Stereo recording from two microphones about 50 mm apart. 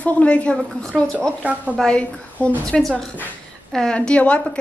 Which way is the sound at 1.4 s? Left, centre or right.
Right.